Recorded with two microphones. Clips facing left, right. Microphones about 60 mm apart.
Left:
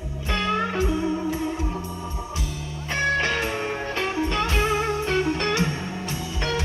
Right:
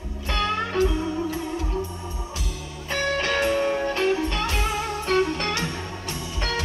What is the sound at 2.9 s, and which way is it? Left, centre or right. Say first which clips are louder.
Music: left 1 dB; left.